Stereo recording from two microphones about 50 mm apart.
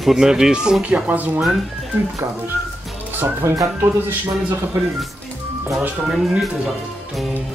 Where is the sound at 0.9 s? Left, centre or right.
Right.